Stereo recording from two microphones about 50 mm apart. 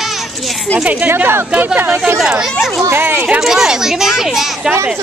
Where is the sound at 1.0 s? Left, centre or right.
Right.